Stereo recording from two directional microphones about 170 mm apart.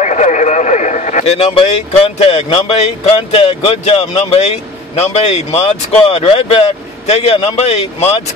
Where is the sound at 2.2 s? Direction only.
35° left (ahead or behind).